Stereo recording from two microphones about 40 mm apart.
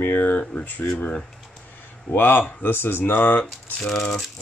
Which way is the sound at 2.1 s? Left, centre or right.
Left.